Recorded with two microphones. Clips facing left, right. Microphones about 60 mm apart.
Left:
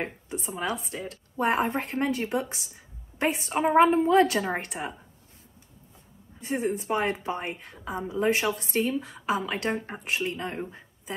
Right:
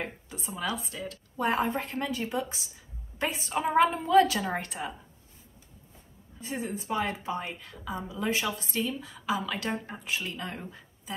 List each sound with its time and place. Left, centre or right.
0.0 s a woman's voice: left
6.4 s a woman's voice: left
10.2 s speech: left